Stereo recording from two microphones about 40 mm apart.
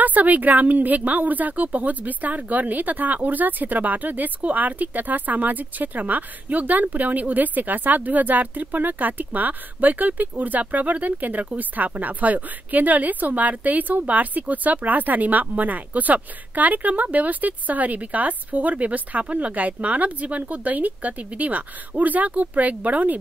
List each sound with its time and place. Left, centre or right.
0.0 s a woman's voice: right